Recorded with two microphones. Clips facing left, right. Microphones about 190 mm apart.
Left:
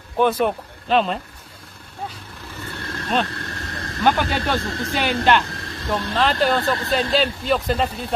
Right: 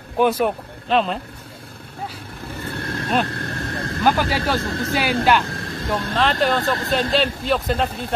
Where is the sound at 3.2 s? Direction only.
55° right (ahead or behind).